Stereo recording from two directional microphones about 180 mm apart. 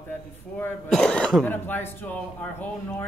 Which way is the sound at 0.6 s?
5° left (ahead or behind).